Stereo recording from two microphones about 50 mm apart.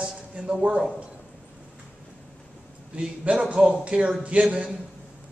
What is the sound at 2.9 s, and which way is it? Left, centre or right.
A man's voice, right.